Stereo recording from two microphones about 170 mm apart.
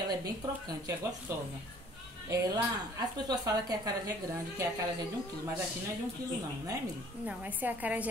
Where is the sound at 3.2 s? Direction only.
25° right (ahead or behind).